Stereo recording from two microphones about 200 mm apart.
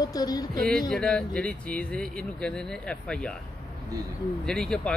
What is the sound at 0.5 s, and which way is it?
Speech, 5° left (ahead or behind).